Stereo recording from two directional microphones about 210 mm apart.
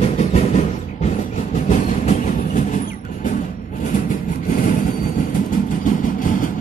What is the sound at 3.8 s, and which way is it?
Train, 40° left (ahead or behind).